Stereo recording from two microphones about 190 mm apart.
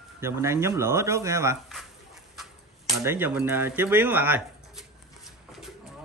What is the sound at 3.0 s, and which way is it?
Speech, 10° right (ahead or behind).